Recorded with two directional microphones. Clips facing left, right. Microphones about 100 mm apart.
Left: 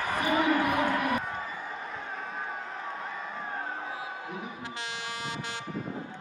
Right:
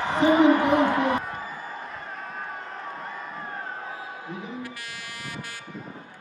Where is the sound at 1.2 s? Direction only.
Centre (ahead or behind).